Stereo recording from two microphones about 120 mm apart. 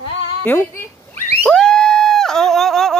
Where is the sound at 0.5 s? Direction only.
15° left (ahead or behind).